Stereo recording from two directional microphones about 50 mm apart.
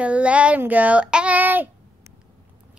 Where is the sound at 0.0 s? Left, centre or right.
Right.